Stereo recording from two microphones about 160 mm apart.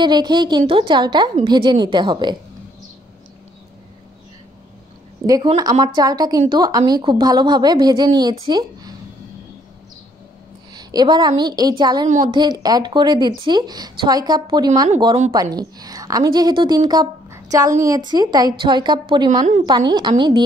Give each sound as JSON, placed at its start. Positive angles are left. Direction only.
{"t": 0.0, "sound": "speech", "side_deg": -25}
{"t": 5.2, "sound": "a woman's voice", "side_deg": -25}
{"t": 10.7, "sound": "a woman's voice", "side_deg": -25}